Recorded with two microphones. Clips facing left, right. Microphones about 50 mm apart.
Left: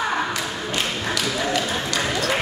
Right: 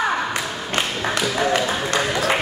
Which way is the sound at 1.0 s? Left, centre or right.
Right.